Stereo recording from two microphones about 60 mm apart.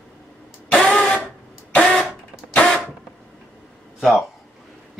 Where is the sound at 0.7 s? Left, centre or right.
Centre.